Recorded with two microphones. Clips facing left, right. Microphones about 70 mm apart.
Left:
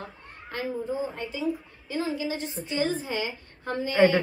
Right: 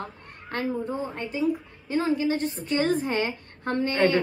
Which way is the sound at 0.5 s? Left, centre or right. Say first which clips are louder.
Right 3 dB; right.